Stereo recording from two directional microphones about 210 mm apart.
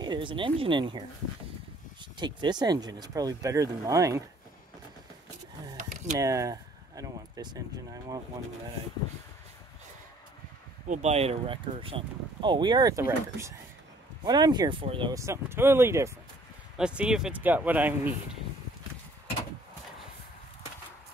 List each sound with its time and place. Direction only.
0.0 s speech: 20° right (ahead or behind)
2.1 s speech: 20° right (ahead or behind)
6.1 s speech: 15° right (ahead or behind)
10.9 s speech: 30° right (ahead or behind); by 18.1 s 5° right (ahead or behind)